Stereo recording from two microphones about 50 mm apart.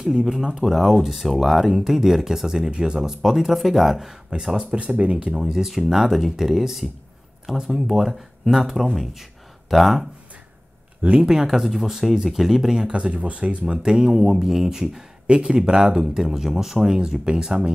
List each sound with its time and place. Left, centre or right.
0.0 s speech: centre
4.7 s speech: right
5.5 s speech: centre
11.0 s speech: centre
12.7 s speech: centre